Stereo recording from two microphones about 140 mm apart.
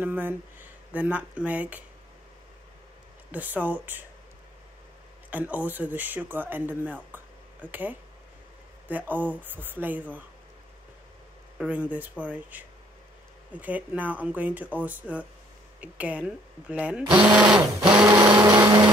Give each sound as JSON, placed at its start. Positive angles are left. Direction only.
{"t": 0.0, "sound": "speech", "side_deg": -15}
{"t": 3.3, "sound": "speech", "side_deg": -10}
{"t": 5.3, "sound": "speech", "side_deg": -10}
{"t": 11.5, "sound": "speech", "side_deg": -10}
{"t": 18.2, "sound": "blender", "side_deg": -30}